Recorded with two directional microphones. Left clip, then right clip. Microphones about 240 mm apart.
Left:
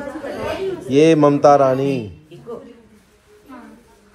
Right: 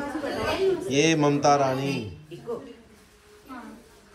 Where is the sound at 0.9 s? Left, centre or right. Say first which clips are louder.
Left 13 dB; centre.